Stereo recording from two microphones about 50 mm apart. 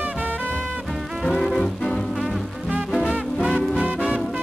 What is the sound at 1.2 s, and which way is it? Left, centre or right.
Music, centre.